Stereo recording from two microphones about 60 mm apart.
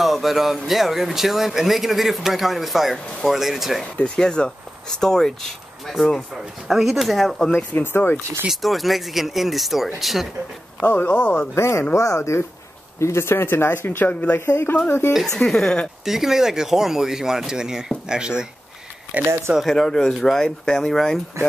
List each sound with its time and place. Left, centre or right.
0.0 s a sound: centre
0.7 s speech: centre
4.0 s speech: centre
7.8 s speech: left
8.5 s speech: centre
10.8 s speech: left
11.5 s speech: left
15.2 s speech: centre
16.1 s speech: centre
19.2 s speech: right
19.6 s speech: centre